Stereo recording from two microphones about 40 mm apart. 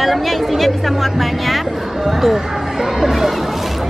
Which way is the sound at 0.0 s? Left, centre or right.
Centre.